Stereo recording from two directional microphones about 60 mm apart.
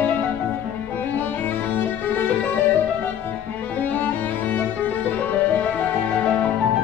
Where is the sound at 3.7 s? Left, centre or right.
Left.